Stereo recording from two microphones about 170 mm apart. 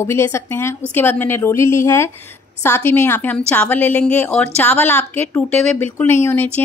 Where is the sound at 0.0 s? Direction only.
15° left (ahead or behind).